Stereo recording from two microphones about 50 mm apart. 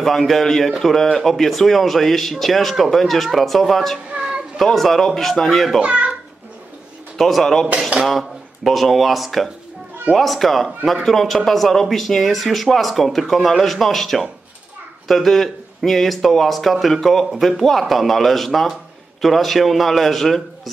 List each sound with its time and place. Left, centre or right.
0.0 s speech: centre
4.1 s a sound: centre
4.6 s speech: centre
5.8 s a child's voice: right
7.2 s speech: centre